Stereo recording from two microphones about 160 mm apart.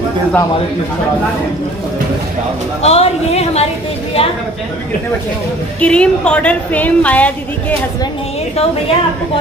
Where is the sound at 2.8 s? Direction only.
40° left (ahead or behind).